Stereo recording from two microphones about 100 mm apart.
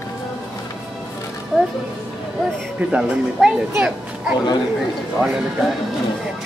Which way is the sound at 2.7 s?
10° right (ahead or behind).